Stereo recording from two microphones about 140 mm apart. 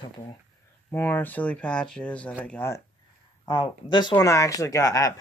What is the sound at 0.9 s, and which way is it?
Speech, 15° left (ahead or behind).